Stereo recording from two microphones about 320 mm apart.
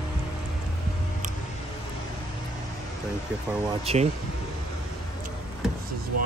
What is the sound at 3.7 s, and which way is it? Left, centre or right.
Speech, centre.